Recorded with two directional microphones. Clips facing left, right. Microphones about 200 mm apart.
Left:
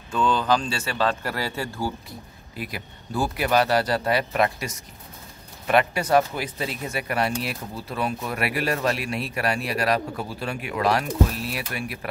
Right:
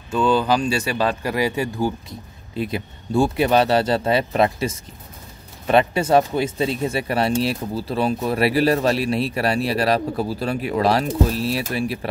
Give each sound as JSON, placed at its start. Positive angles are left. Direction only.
{"t": 0.1, "sound": "speech", "side_deg": -10}